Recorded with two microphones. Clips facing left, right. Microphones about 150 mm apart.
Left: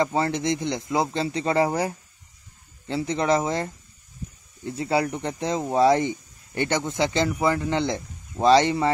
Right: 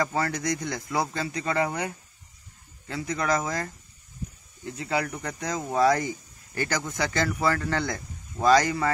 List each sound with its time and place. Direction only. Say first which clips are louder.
0.0 s speech: left 4 dB; 25° left (ahead or behind)